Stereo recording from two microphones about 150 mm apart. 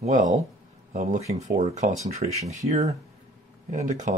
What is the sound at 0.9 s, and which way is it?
Speech, 45° right (ahead or behind).